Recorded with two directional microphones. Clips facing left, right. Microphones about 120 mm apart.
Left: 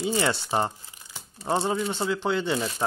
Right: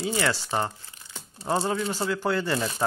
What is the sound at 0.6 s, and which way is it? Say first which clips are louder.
Crumpling: left 2 dB; 15° left (ahead or behind).